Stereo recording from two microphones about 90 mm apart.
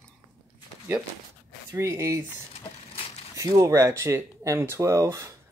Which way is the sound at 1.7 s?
30° right (ahead or behind).